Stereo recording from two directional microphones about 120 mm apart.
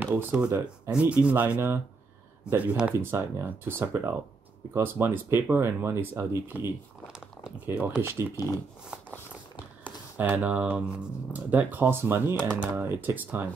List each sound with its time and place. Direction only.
0.0 s speech: 15° right (ahead or behind)
9.8 s speech: 15° right (ahead or behind)